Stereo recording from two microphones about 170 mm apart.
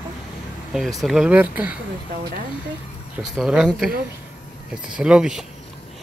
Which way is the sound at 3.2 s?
5° right (ahead or behind).